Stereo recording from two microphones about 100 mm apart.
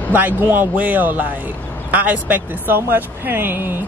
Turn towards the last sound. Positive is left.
turn(degrees=-20)  # may be behind; listen again after turning